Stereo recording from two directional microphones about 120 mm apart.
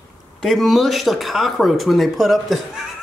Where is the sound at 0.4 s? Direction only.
Centre (ahead or behind).